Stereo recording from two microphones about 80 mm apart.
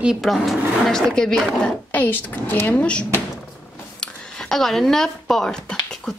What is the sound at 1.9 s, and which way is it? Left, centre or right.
A woman's voice, left.